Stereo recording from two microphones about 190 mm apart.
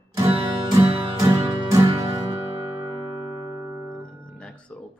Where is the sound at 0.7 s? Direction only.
20° right (ahead or behind).